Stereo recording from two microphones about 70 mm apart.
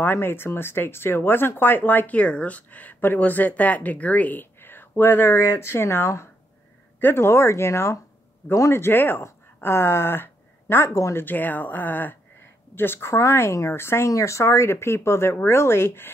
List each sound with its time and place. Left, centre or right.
0.0 s speech: left
11.1 s speech: left